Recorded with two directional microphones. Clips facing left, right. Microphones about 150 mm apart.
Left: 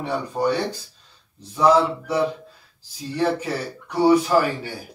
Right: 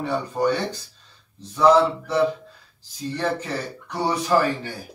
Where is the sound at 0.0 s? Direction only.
10° left (ahead or behind).